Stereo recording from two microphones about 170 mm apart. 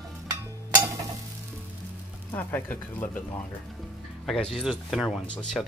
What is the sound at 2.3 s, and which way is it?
Speech, 10° left (ahead or behind).